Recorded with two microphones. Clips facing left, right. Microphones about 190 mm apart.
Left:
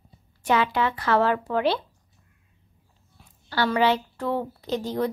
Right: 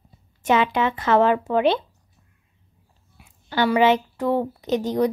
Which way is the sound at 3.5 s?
15° right (ahead or behind).